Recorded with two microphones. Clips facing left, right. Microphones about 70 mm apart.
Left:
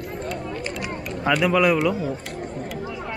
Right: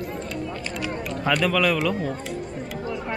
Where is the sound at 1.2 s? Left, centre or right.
Centre.